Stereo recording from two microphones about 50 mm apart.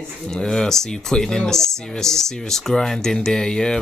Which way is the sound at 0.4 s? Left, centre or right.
Centre.